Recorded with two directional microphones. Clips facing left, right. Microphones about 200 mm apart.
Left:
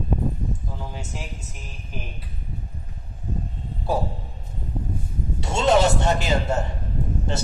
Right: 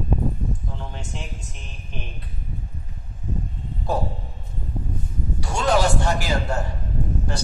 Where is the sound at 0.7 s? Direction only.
5° left (ahead or behind).